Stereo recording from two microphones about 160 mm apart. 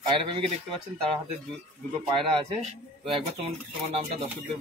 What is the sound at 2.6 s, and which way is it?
Speech, 40° right (ahead or behind).